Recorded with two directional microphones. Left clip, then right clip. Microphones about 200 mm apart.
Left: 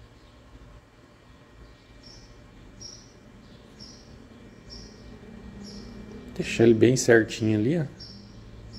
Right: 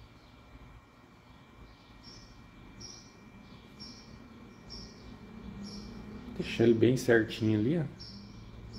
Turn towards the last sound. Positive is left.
turn(degrees=15)  # may be behind; listen again after turning